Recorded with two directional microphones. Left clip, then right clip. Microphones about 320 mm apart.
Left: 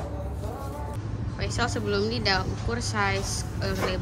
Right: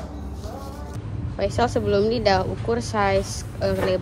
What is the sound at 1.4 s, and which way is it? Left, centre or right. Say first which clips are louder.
A woman's voice: right 7 dB; centre.